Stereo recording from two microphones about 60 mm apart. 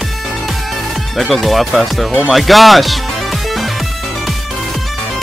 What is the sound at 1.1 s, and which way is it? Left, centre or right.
Speech, centre.